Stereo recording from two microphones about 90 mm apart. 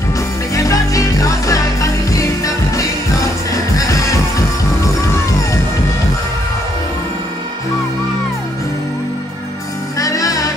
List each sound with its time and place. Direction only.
0.6 s music: 40° left (ahead or behind)
9.9 s music: 40° left (ahead or behind)